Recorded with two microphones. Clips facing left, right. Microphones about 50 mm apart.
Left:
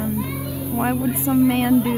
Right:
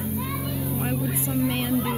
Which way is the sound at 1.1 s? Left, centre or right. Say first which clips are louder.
Left 8 dB; left.